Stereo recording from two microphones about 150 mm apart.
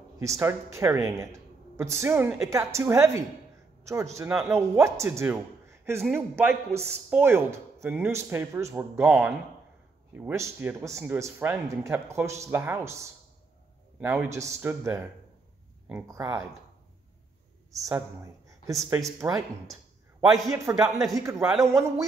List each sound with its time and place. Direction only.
0.2 s a man's voice: 20° right (ahead or behind)
14.0 s speech: 15° right (ahead or behind)
17.7 s speech: 20° right (ahead or behind)
20.4 s a man's voice: 20° right (ahead or behind)
20.7 s speech: 5° right (ahead or behind)
21.6 s a man's voice: 20° right (ahead or behind)